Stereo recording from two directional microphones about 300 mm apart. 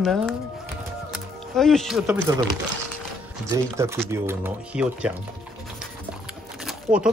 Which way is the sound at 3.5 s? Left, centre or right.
Centre.